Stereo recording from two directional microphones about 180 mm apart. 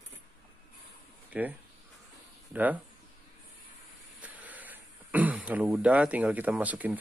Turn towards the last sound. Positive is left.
turn(degrees=-10)  # may be behind; listen again after turning